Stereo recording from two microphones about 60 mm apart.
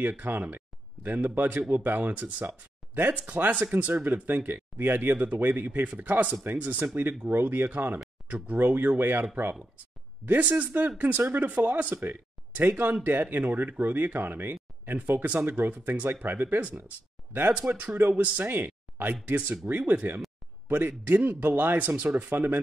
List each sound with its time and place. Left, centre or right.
0.3 s speech: right
10.5 s speech: right
17.9 s speech: right